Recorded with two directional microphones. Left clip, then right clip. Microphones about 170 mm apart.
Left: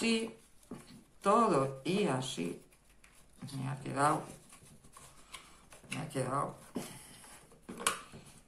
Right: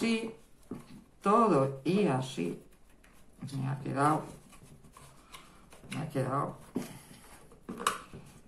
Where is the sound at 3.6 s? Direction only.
15° left (ahead or behind).